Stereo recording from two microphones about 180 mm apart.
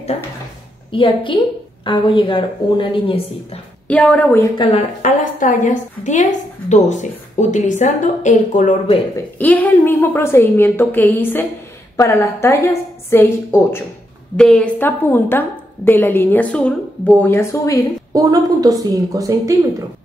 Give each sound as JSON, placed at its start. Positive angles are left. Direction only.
{"t": 0.9, "sound": "a woman's voice", "side_deg": 25}
{"t": 3.8, "sound": "a woman's voice", "side_deg": 5}
{"t": 4.6, "sound": "a woman's voice", "side_deg": 30}
{"t": 5.0, "sound": "a woman's voice", "side_deg": 45}
{"t": 9.4, "sound": "a woman's voice", "side_deg": 10}
{"t": 18.1, "sound": "a woman's voice", "side_deg": -20}